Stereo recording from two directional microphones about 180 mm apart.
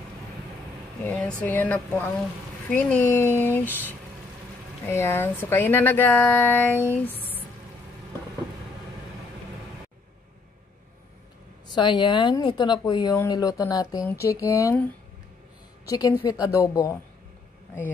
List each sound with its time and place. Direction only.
1.0 s speech: 5° left (ahead or behind)
3.6 s speech: 10° right (ahead or behind)
4.8 s speech: 15° left (ahead or behind)
11.7 s speech: 25° left (ahead or behind)
15.9 s speech: 20° left (ahead or behind)